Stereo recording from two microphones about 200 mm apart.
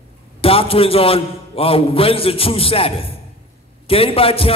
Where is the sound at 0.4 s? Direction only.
30° left (ahead or behind).